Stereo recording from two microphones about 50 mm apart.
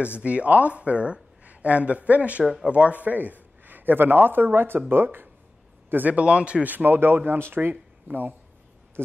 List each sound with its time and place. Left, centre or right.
0.2 s speech: right
2.4 s speech: centre
2.7 s a man's voice: right
6.1 s speech: right
6.6 s speech: right